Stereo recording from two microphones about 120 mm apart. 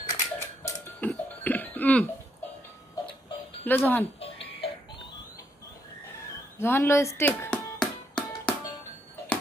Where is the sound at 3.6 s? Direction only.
15° left (ahead or behind).